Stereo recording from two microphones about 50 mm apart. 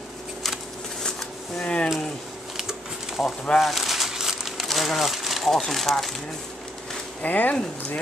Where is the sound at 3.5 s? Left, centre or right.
Centre.